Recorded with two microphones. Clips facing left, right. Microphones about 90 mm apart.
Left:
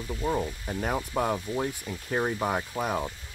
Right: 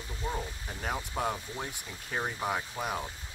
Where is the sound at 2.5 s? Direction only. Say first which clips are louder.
Left 4 dB; 25° left (ahead or behind).